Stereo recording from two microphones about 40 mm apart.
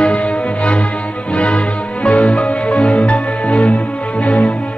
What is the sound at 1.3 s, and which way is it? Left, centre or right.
Music, left.